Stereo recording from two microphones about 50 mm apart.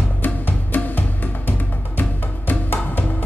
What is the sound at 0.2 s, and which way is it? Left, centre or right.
Music, left.